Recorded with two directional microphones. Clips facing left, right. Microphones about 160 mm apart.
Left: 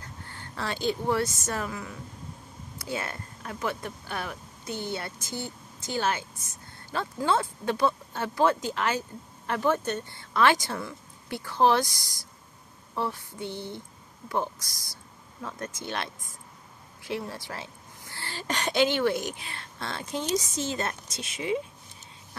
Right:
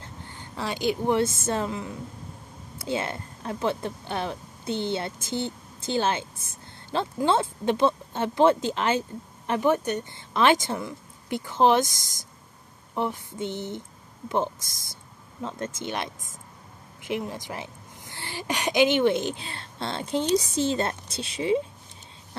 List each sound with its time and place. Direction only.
0.0 s a woman's voice: 15° right (ahead or behind)